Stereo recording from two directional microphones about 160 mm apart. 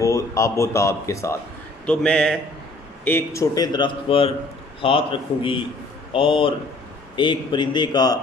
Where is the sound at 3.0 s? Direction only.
15° left (ahead or behind).